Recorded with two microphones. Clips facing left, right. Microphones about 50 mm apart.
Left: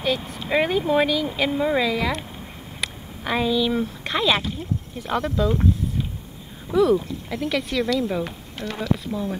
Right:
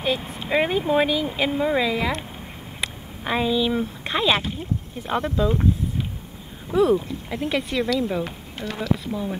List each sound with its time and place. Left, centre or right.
0.0 s speech: centre
6.7 s speech: right
8.0 s speech: centre